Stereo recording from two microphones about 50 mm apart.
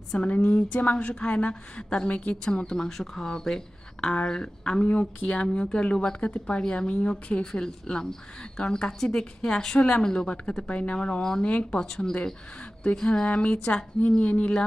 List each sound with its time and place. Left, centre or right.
0.2 s a woman's voice: left
11.4 s a woman's voice: left
11.8 s a woman's voice: centre
13.3 s a woman's voice: left